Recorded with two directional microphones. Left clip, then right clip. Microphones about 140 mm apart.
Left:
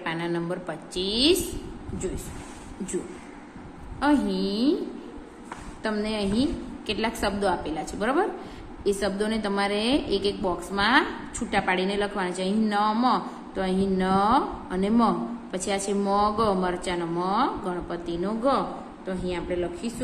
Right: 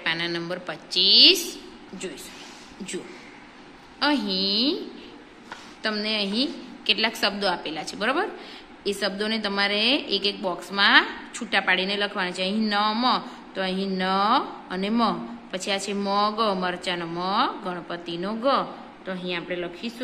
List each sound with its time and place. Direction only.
0.0 s a sound: 5° right (ahead or behind)
0.9 s a woman's voice: centre (ahead or behind)
4.0 s a woman's voice: 10° right (ahead or behind)
5.8 s a woman's voice: 10° right (ahead or behind)